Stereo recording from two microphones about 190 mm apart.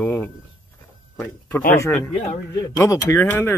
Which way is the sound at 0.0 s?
10° left (ahead or behind).